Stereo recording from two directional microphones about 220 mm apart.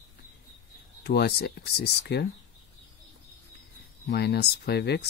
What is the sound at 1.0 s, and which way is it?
Speech, 45° left (ahead or behind).